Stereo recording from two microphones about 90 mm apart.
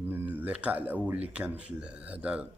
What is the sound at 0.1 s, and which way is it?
Speech, 20° right (ahead or behind).